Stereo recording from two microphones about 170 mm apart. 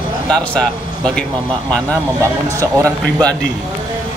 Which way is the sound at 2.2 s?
20° right (ahead or behind).